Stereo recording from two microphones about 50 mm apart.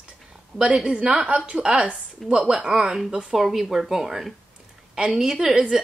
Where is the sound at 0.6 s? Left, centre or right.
Centre.